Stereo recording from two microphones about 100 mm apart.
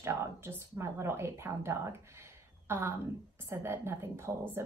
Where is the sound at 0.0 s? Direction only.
25° right (ahead or behind).